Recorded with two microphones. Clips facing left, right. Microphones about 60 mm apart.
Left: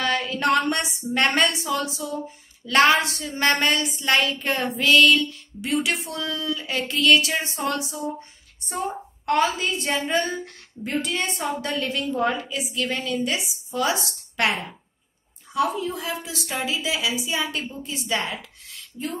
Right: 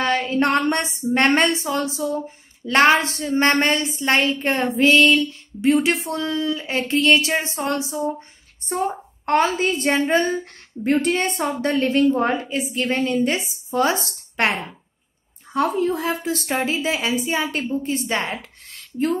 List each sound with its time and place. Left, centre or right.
0.0 s a woman's voice: right